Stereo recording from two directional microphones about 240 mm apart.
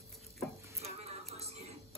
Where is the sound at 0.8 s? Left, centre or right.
Right.